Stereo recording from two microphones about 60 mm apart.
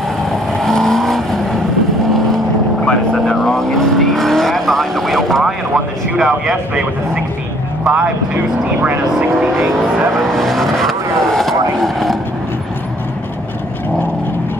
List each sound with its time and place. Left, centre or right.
0.7 s vehicle: centre
2.8 s speech: centre
3.4 s vehicle: centre
6.1 s speech: centre
10.1 s vehicle: centre